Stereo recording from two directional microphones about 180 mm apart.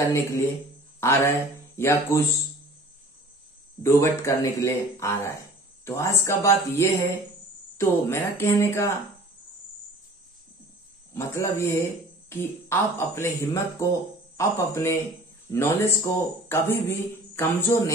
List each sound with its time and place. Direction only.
0.0 s speech: 15° left (ahead or behind)
3.8 s speech: 15° left (ahead or behind)
11.1 s speech: 15° left (ahead or behind)